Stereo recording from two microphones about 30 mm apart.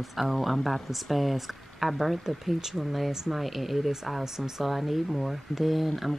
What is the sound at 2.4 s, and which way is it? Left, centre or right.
Speech, centre.